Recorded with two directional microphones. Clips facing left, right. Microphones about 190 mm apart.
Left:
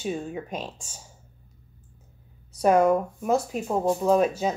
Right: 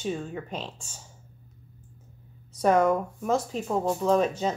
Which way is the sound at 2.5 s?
10° left (ahead or behind).